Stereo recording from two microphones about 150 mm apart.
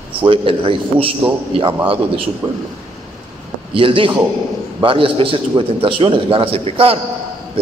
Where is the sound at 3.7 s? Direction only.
35° right (ahead or behind).